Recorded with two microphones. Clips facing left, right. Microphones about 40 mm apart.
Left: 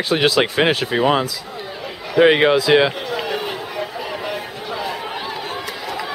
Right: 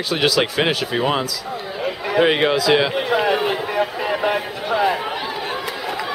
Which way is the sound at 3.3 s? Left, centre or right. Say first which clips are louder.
Right 5 dB; centre.